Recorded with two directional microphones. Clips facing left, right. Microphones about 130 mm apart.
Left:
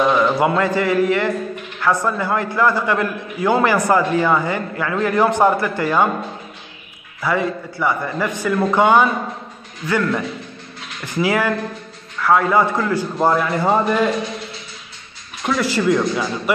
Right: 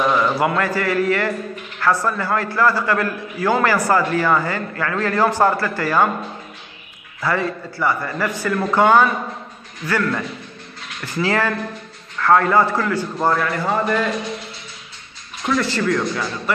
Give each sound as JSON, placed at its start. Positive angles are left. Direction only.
{"t": 0.4, "sound": "a man's voice", "side_deg": 20}
{"t": 7.2, "sound": "a man's voice", "side_deg": 15}
{"t": 15.4, "sound": "a man's voice", "side_deg": 10}